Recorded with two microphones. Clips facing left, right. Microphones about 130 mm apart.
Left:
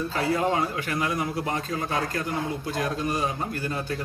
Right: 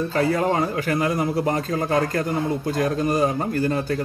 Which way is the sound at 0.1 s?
45° right (ahead or behind).